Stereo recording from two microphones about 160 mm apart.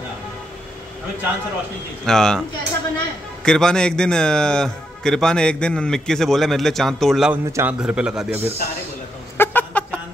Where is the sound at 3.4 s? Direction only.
5° left (ahead or behind).